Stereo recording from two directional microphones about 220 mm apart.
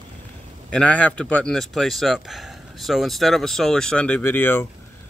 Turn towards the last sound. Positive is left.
turn(degrees=10)  # may be behind; listen again after turning